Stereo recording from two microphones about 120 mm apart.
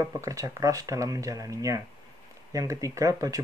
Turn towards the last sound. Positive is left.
turn(degrees=-30)  # may be behind; listen again after turning